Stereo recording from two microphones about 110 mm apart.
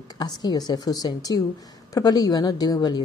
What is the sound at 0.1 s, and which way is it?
Speech, 40° left (ahead or behind).